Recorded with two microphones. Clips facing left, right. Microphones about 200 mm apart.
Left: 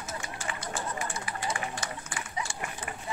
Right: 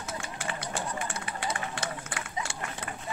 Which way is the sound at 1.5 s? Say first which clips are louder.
Right 1 dB; 60° right (ahead or behind).